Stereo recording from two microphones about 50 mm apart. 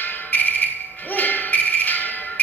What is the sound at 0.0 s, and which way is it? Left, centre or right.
Music, left.